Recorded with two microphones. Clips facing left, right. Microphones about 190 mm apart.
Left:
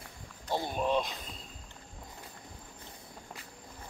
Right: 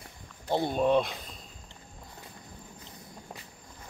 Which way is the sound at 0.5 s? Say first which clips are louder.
Right 5 dB; 20° right (ahead or behind).